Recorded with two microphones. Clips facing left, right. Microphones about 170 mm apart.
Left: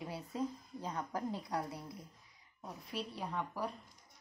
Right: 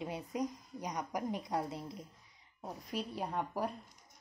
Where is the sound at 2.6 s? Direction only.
40° right (ahead or behind).